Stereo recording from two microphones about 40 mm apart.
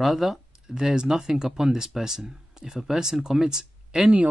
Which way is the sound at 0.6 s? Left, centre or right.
Centre.